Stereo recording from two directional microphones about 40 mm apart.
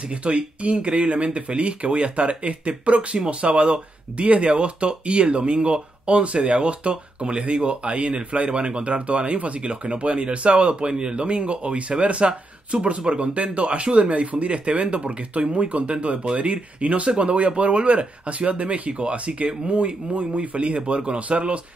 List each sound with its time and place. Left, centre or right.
0.1 s speech: right